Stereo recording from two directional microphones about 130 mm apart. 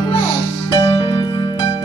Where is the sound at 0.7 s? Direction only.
45° left (ahead or behind).